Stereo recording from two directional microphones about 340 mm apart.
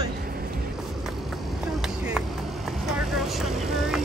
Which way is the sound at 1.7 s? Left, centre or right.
Centre.